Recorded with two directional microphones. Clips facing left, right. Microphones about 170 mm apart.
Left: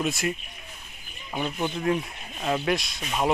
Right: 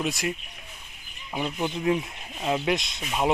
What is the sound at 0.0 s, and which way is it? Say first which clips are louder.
Speech: left 1 dB; 15° right (ahead or behind).